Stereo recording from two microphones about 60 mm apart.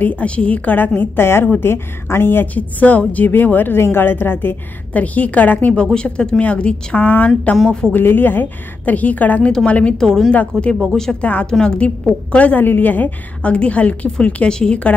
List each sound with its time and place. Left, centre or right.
0.0 s a woman's voice: left
4.9 s a woman's voice: left
7.6 s a woman's voice: centre
7.9 s a woman's voice: left
9.9 s a woman's voice: centre
11.1 s a woman's voice: left